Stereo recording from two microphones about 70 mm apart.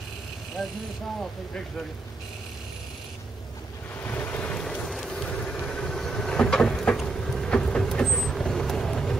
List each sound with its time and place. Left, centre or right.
0.6 s speech: centre
4.0 s ocean: left
4.6 s vehicle: centre